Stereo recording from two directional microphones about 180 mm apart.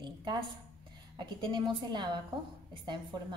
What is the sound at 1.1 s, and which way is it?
A woman's voice, 25° right (ahead or behind).